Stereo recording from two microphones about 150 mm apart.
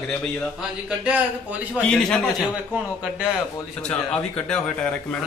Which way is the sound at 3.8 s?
5° left (ahead or behind).